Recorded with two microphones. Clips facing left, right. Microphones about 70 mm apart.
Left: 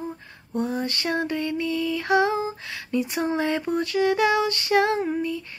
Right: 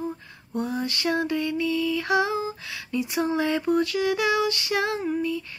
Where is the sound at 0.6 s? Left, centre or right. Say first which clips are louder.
Left 1 dB; left.